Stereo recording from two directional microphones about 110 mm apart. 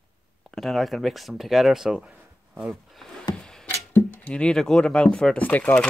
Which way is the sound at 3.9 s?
10° left (ahead or behind).